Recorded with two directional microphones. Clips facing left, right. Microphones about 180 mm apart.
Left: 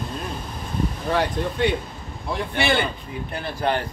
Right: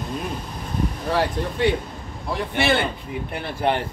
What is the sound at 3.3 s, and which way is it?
Speech, 25° right (ahead or behind).